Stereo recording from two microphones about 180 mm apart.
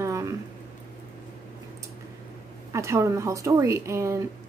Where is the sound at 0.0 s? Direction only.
15° right (ahead or behind).